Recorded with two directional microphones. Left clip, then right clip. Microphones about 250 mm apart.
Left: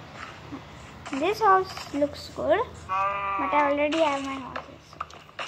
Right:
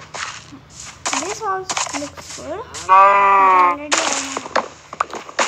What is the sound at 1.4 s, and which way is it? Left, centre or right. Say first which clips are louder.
Speech: left 1 dB; centre.